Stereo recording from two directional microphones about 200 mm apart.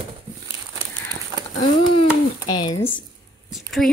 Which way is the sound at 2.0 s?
20° left (ahead or behind).